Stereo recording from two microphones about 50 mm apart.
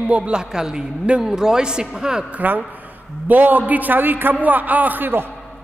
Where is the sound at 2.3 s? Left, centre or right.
Right.